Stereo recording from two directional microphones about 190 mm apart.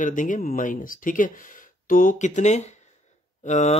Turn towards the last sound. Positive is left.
turn(degrees=35)  # may be behind; listen again after turning